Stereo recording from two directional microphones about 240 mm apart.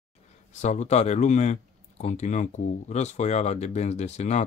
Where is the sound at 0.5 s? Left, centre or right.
Left.